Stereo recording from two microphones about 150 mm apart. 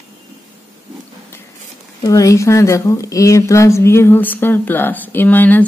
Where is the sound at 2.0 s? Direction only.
20° left (ahead or behind).